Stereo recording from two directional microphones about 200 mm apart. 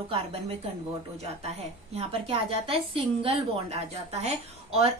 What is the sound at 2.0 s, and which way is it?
A woman's voice, 25° right (ahead or behind).